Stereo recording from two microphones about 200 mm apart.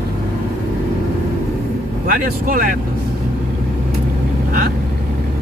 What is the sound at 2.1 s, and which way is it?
Speech, 45° right (ahead or behind).